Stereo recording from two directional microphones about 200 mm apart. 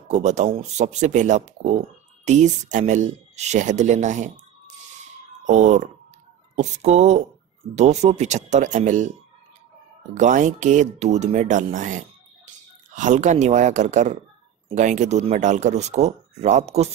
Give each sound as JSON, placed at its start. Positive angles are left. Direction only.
{"t": 0.1, "sound": "speech", "side_deg": -35}
{"t": 5.5, "sound": "speech", "side_deg": -35}
{"t": 10.1, "sound": "speech", "side_deg": -40}